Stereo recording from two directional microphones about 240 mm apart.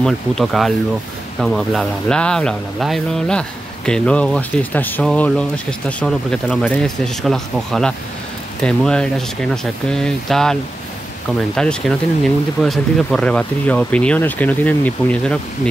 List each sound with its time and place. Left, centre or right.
0.0 s speech: centre